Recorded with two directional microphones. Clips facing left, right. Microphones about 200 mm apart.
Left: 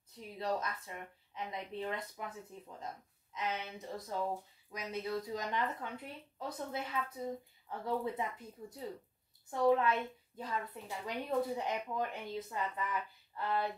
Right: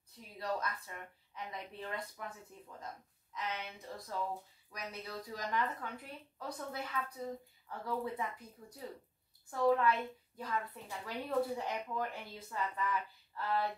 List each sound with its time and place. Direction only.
0.4 s a woman's voice: 25° left (ahead or behind)
3.3 s a woman's voice: 20° left (ahead or behind)
13.3 s a sound: 20° left (ahead or behind)